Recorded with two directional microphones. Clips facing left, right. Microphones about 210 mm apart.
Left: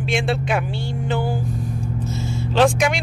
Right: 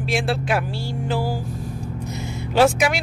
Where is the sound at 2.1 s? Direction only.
15° right (ahead or behind).